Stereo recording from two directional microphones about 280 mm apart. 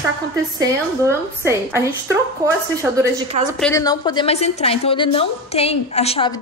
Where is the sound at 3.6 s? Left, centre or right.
Centre.